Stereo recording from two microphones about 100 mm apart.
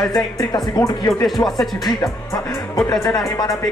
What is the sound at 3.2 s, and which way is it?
Music, 40° left (ahead or behind).